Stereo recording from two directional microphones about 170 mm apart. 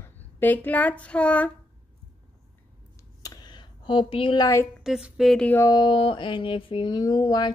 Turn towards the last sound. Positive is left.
turn(degrees=25)  # may be behind; listen again after turning